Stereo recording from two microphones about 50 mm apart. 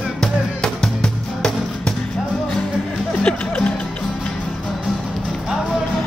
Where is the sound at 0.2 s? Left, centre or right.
Centre.